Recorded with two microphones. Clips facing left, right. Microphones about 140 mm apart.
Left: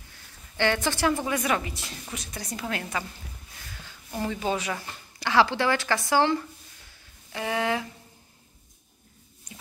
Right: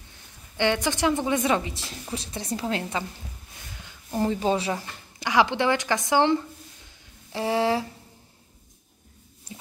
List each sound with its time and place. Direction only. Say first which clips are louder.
0.6 s a woman's voice: right 1 dB; 15° right (ahead or behind)
4.2 s a woman's voice: right 4 dB; 30° right (ahead or behind)
5.2 s a woman's voice: right 1 dB; 15° right (ahead or behind)
7.3 s speech: right 4 dB; 30° right (ahead or behind)
9.5 s a sound: right 5 dB; 30° right (ahead or behind)